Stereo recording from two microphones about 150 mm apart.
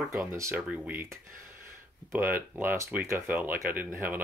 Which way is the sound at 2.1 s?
15° right (ahead or behind).